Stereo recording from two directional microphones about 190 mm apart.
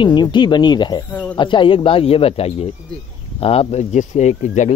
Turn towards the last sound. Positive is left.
turn(degrees=40)  # may be behind; listen again after turning